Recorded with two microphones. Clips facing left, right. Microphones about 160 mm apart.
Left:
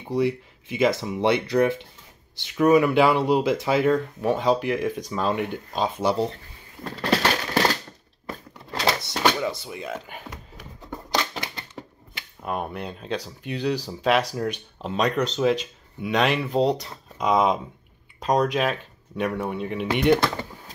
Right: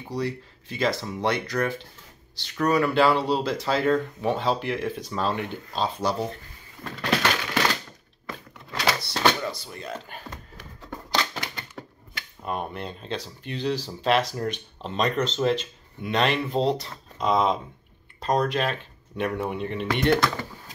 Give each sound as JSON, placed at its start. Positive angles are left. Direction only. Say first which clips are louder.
{"t": 0.1, "sound": "speech", "louder": "left 6 dB", "side_deg": 20}
{"t": 3.8, "sound": "speech", "louder": "left 2 dB", "side_deg": 5}
{"t": 5.7, "sound": "speech", "louder": "left 2 dB", "side_deg": 20}
{"t": 6.8, "sound": "a sound", "louder": "left 2 dB", "side_deg": 35}
{"t": 8.7, "sound": "a sound", "louder": "left 2 dB", "side_deg": 20}
{"t": 9.7, "sound": "speech", "louder": "left 3 dB", "side_deg": 5}
{"t": 10.8, "sound": "a sound", "louder": "left 1 dB", "side_deg": 20}
{"t": 12.4, "sound": "speech", "louder": "left 2 dB", "side_deg": 5}
{"t": 20.2, "sound": "typing", "louder": "even", "side_deg": 25}